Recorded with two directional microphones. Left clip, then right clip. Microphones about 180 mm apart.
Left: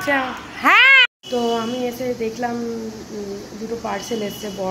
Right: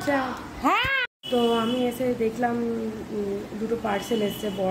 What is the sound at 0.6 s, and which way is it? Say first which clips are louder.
Cat: left 11 dB; 15° right (ahead or behind).